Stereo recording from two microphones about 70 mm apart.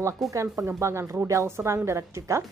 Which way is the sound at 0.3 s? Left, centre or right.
Right.